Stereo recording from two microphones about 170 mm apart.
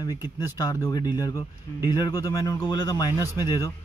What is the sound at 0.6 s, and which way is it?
Speech, 25° left (ahead or behind).